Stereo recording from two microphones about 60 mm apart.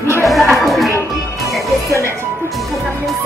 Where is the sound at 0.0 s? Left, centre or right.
Left.